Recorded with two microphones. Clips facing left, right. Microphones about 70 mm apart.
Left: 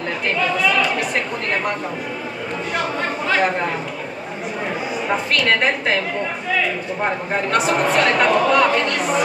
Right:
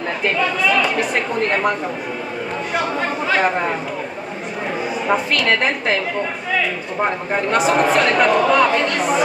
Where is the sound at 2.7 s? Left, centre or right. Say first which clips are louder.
Right 2 dB; centre.